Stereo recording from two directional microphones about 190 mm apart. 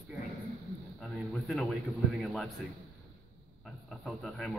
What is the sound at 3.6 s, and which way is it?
Speech, 5° left (ahead or behind).